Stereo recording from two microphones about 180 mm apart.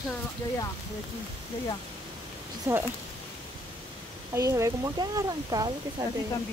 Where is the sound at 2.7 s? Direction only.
10° right (ahead or behind).